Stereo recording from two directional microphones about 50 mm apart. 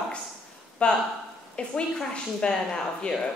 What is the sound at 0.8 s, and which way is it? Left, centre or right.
A woman's voice, left.